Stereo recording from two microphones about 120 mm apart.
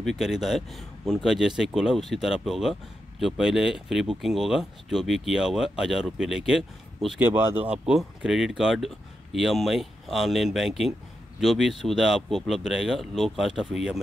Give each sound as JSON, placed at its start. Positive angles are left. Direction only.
{"t": 0.0, "sound": "speech", "side_deg": 0}
{"t": 7.2, "sound": "speech", "side_deg": -20}
{"t": 7.6, "sound": "speech", "side_deg": -5}